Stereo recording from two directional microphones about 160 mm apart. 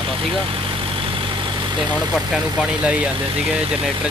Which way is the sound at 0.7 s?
35° right (ahead or behind).